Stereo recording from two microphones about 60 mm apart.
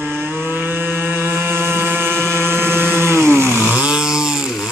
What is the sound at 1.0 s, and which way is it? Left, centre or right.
Vehicle, right.